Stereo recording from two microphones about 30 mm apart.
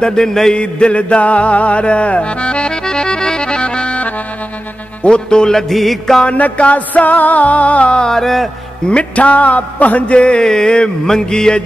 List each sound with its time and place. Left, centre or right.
0.0 s a sound: left
0.6 s a man's voice: left
1.0 s accordion: left
2.7 s accordion: left
5.0 s a man's voice: left
5.7 s music: centre
6.3 s music: left
8.0 s music: centre
8.8 s accordion: left
10.1 s a man's voice: left
10.4 s a sound: left